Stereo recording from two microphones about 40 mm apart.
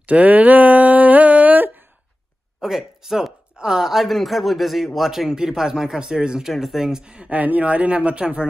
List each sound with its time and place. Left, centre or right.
0.0 s a sound: right
2.6 s speech: centre
6.4 s speech: centre
7.0 s speech: right
7.3 s speech: right